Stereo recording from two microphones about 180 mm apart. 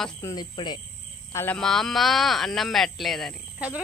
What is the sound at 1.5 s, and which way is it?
Speech, 5° left (ahead or behind).